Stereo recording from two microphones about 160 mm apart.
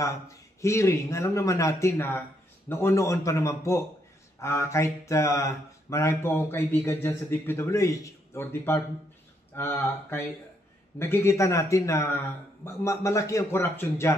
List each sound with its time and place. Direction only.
0.0 s speech: 20° left (ahead or behind)